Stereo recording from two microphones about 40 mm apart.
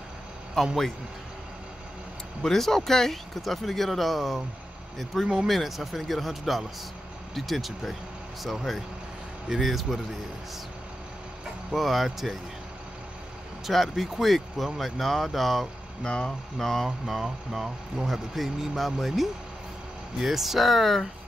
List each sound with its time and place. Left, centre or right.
0.6 s speech: centre
2.4 s speech: centre
11.7 s speech: centre
13.7 s speech: centre
16.0 s speech: left
16.5 s a sound: centre
16.8 s speech: centre